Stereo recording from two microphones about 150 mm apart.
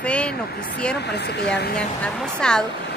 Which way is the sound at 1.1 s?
90° left.